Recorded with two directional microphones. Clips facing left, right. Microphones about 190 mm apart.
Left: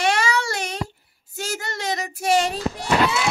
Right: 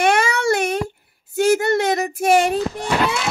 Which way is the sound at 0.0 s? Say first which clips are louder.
Right 4 dB; 55° right (ahead or behind).